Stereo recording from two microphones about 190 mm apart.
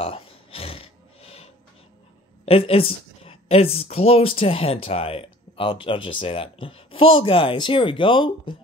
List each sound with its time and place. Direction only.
0.0 s music: 30° left (ahead or behind)
2.4 s speech: 30° left (ahead or behind)